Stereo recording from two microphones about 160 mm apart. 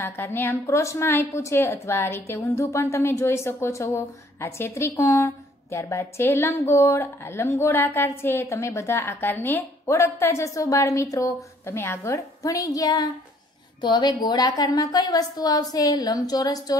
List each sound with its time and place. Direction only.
0.0 s a woman's voice: 15° left (ahead or behind)